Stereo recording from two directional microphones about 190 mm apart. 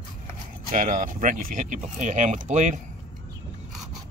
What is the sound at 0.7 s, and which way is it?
Speech, 45° right (ahead or behind).